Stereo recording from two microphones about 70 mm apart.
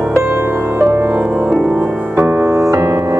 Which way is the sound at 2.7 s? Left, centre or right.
Right.